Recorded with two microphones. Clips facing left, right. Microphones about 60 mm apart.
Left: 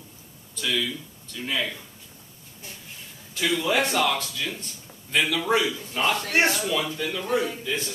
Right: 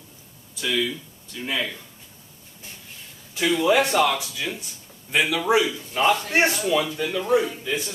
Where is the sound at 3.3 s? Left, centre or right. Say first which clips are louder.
Right 4 dB; centre.